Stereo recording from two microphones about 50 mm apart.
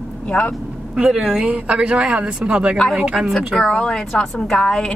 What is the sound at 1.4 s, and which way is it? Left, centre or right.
Speech, right.